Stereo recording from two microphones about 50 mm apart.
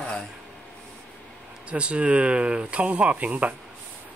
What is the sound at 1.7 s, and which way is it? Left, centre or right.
Speech, right.